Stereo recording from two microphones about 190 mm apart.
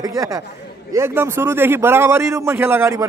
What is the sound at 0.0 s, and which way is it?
Speech, 20° right (ahead or behind).